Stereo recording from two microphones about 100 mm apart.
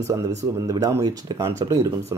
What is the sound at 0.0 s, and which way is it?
Speech, 35° right (ahead or behind).